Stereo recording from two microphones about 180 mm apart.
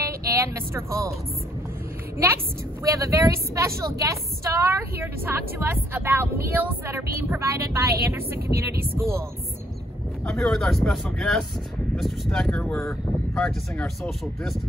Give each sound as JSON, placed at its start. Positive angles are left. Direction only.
{"t": 0.0, "sound": "speech", "side_deg": -15}
{"t": 2.8, "sound": "a woman's voice", "side_deg": -15}
{"t": 10.2, "sound": "speech", "side_deg": 0}